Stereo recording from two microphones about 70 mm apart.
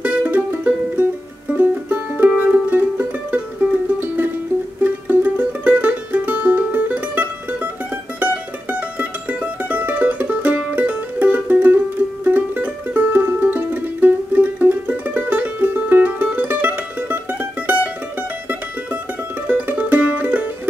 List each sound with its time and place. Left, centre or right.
0.0 s music: right
4.8 s music: right
8.2 s mandolin: right
12.3 s music: right
16.3 s mandolin: right
19.4 s music: right